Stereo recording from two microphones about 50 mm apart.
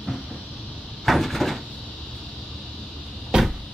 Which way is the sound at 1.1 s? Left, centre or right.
Centre.